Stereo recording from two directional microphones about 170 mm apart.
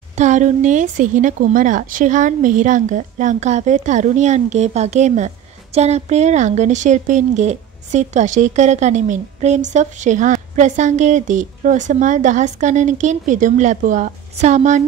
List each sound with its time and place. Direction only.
0.2 s speech: 45° right (ahead or behind)